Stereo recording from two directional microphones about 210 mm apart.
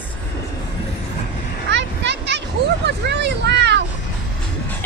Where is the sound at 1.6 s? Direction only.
55° right (ahead or behind).